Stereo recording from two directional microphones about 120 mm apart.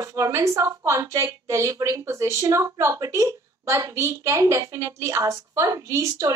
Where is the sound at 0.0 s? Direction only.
25° right (ahead or behind).